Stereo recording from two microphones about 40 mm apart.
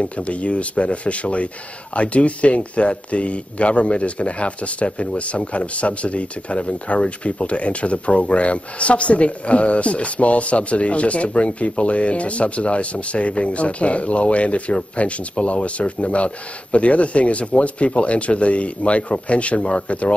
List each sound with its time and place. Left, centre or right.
0.0 s speech: left